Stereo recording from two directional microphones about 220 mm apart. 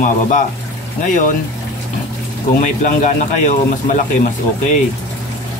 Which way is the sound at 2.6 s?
35° left (ahead or behind).